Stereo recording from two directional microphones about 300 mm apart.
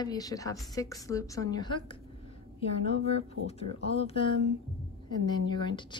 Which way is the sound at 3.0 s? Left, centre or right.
Centre.